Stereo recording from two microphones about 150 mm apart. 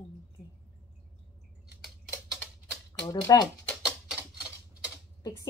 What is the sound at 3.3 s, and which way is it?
Speech, 25° left (ahead or behind).